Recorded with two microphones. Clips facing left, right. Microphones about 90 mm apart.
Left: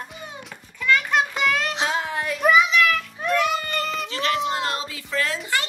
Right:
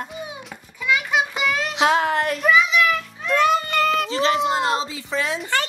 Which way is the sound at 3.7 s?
80° right.